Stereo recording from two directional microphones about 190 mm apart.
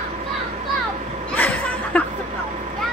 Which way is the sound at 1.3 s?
10° left (ahead or behind).